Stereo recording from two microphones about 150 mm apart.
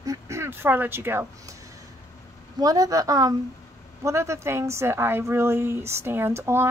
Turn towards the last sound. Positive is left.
turn(degrees=-15)  # may be behind; listen again after turning